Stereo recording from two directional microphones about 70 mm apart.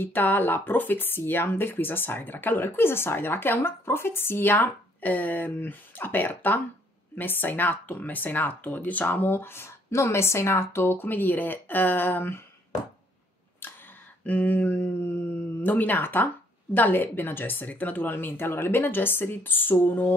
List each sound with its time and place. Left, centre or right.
0.0 s speech: left
14.2 s speech: left